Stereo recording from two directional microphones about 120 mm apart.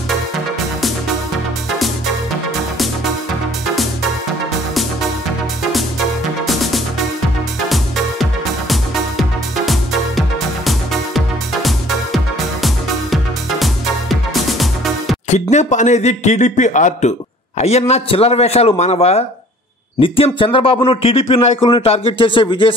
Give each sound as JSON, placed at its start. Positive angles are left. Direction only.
{"t": 5.6, "sound": "music", "side_deg": 0}
{"t": 15.2, "sound": "speech", "side_deg": 75}
{"t": 17.6, "sound": "a man's voice", "side_deg": 60}
{"t": 20.0, "sound": "speech", "side_deg": 50}